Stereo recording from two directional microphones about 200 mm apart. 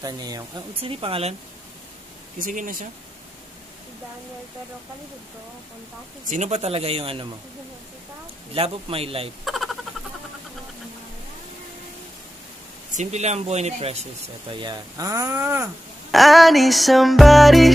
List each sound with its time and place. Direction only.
0.0 s a man's voice: 20° right (ahead or behind)
2.3 s speech: 40° right (ahead or behind)
6.2 s speech: 35° right (ahead or behind)
8.5 s a man's voice: 30° right (ahead or behind)
9.4 s a sound: centre (ahead or behind)
12.9 s speech: 35° right (ahead or behind)
14.5 s speech: 20° right (ahead or behind)
16.1 s music: centre (ahead or behind)